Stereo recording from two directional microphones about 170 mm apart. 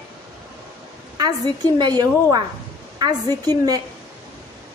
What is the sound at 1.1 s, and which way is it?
A woman's voice, 25° right (ahead or behind).